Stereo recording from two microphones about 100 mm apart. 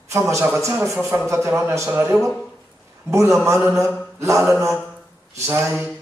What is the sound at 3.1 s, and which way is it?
Speech, 30° right (ahead or behind).